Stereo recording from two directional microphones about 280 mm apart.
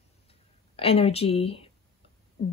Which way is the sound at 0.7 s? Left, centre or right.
Left.